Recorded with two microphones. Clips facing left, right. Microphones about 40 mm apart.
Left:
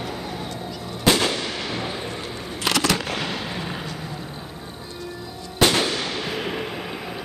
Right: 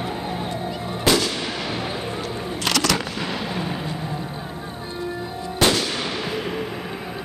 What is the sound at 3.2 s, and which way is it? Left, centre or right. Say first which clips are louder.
Fireworks: right 2 dB; centre.